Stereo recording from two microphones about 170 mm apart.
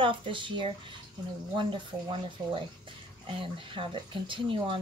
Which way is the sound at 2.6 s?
30° right (ahead or behind).